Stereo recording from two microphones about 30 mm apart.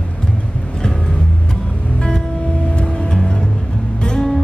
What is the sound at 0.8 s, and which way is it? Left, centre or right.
Vehicle, left.